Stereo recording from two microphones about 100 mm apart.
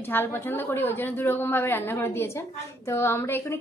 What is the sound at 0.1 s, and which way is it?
A woman's voice, 20° left (ahead or behind).